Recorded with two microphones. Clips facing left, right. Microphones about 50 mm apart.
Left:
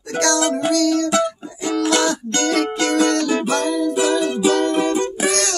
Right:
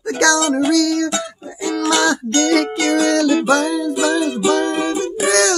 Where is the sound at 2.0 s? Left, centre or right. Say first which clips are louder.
Right 3 dB; right.